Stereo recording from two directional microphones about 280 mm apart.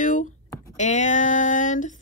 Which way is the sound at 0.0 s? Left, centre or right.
Left.